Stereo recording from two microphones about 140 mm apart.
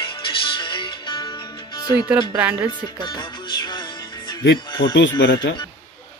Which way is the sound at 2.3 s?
15° right (ahead or behind).